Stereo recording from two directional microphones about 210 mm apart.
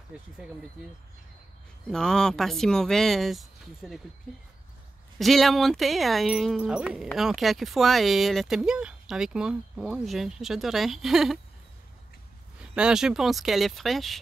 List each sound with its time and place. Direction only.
1.9 s speech: 5° left (ahead or behind)
5.2 s speech: centre (ahead or behind)
12.5 s speech: 5° right (ahead or behind)